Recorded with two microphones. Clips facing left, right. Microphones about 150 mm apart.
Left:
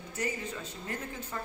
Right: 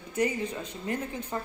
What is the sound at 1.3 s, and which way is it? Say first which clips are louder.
Speech: right 5 dB; 25° right (ahead or behind).